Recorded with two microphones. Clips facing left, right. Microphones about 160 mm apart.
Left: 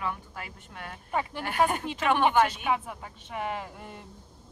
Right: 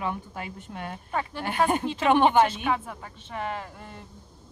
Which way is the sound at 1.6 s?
25° right (ahead or behind).